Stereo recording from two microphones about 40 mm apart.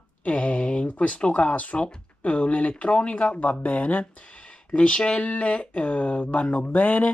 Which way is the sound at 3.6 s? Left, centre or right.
Left.